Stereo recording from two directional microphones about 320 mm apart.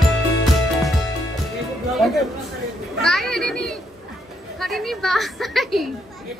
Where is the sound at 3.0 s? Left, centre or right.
Centre.